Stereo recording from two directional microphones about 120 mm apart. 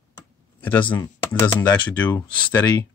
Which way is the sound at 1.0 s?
20° left (ahead or behind).